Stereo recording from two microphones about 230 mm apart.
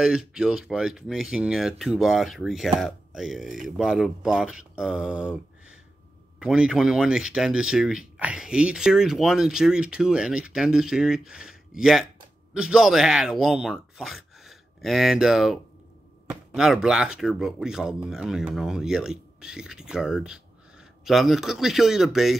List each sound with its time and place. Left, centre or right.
0.0 s speech: centre